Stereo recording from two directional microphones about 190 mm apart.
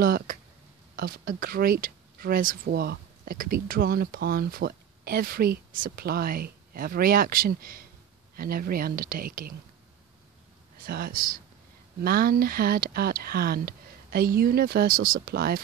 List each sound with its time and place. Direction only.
0.0 s a sound: 50° right (ahead or behind)
0.9 s speech: 50° right (ahead or behind)
10.9 s speech: 50° right (ahead or behind)